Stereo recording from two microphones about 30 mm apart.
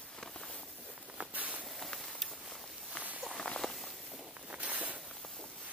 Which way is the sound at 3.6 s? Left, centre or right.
Centre.